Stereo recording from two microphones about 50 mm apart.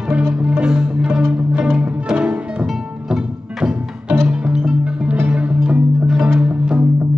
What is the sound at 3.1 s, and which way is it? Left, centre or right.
Music, centre.